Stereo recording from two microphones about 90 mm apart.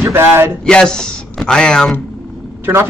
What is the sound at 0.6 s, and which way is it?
Speech, 5° left (ahead or behind).